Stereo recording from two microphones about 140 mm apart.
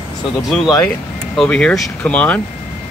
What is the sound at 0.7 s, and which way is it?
Speech, 15° left (ahead or behind).